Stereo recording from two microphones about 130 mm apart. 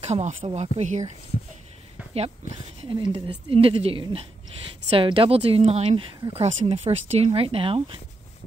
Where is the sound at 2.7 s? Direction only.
45° right (ahead or behind).